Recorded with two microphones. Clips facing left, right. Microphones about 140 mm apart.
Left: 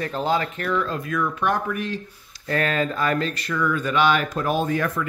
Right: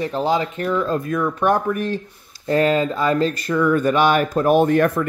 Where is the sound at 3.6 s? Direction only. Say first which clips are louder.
Right 5 dB; 45° right (ahead or behind).